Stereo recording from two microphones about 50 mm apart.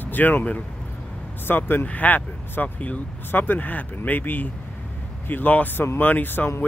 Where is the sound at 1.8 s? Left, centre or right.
Left.